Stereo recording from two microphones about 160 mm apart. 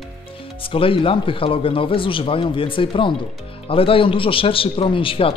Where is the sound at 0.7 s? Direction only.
35° left (ahead or behind).